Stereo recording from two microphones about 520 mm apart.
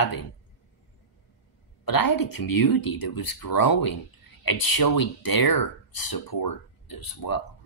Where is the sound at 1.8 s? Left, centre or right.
Left.